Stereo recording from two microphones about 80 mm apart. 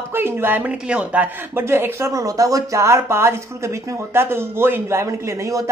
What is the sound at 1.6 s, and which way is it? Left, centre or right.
Speech, right.